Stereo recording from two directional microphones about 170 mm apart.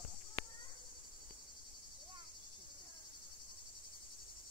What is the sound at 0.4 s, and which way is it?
Cricket, 30° left (ahead or behind).